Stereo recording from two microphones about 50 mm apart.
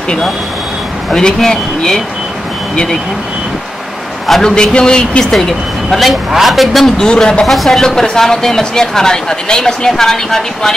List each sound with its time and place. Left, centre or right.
1.1 s speech: centre
4.3 s speech: centre
5.3 s speech: centre
7.0 s speech: centre
7.5 s speech: centre
7.8 s speech: centre